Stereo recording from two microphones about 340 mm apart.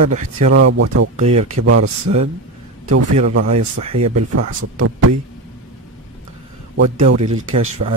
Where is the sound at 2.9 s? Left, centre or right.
Right.